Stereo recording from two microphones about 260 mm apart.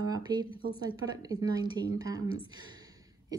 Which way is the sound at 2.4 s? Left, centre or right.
Centre.